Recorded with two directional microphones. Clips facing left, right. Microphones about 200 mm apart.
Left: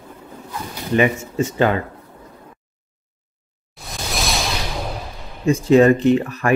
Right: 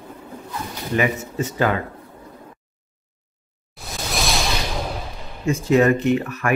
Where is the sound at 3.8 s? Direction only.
Centre (ahead or behind).